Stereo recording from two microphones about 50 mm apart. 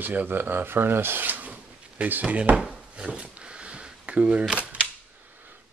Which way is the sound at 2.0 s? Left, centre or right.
Right.